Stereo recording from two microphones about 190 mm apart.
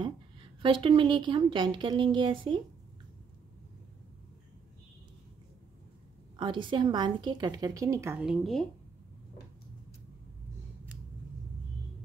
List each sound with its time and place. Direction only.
0.6 s speech: 25° right (ahead or behind)
6.3 s speech: 25° right (ahead or behind)
8.3 s speech: centre (ahead or behind)